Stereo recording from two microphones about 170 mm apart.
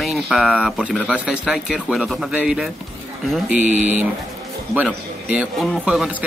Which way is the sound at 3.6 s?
45° right (ahead or behind).